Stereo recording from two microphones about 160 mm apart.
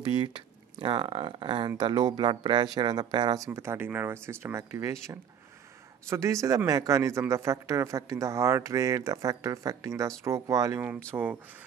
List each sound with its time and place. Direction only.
0.0 s a man's voice: 30° right (ahead or behind)
6.0 s a man's voice: 20° right (ahead or behind)